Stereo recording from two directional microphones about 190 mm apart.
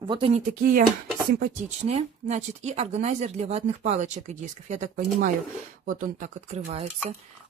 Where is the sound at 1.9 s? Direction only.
35° right (ahead or behind).